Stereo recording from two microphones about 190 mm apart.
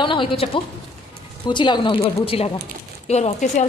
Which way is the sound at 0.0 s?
25° left (ahead or behind).